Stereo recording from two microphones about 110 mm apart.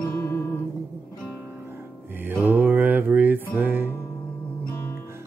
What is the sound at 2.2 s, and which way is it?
Music, 15° right (ahead or behind).